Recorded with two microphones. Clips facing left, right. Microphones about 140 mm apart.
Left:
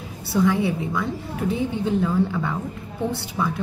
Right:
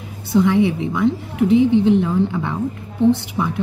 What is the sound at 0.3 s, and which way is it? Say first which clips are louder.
A woman's voice: right 5 dB; 20° right (ahead or behind).